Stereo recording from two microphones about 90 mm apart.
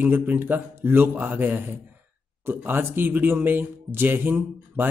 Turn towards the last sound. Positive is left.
turn(degrees=-25)  # may be behind; listen again after turning